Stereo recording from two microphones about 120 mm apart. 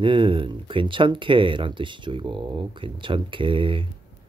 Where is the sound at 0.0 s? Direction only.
45° right (ahead or behind).